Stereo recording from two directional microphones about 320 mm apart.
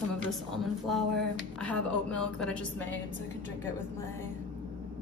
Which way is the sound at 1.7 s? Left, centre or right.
Centre.